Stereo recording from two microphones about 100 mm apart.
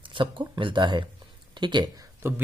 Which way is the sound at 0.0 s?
55° right (ahead or behind).